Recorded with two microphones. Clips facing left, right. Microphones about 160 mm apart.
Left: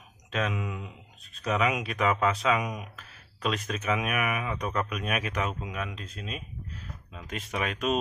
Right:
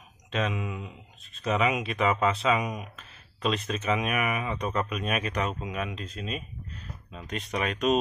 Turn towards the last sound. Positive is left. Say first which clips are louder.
# right 3 dB
turn(degrees=0)  # may be behind; listen again after turning